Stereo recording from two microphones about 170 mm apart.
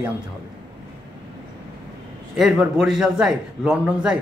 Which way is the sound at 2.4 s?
5° right (ahead or behind).